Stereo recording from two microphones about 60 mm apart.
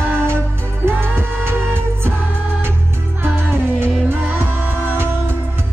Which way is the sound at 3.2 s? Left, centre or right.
Right.